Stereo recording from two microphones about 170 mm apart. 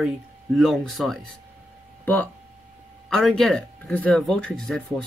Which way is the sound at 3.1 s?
Centre (ahead or behind).